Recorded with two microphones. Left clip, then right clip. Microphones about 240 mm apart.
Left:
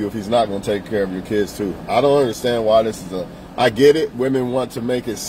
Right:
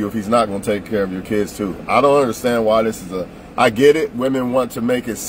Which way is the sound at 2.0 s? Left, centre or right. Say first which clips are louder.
Right 1 dB; centre.